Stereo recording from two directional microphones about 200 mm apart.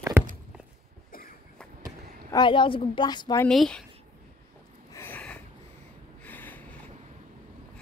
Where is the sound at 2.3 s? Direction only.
20° left (ahead or behind).